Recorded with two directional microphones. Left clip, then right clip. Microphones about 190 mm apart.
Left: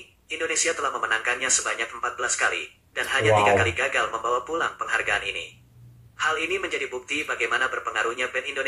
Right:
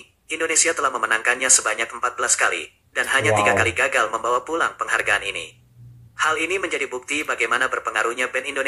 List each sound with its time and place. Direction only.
0.3 s speech: 30° right (ahead or behind)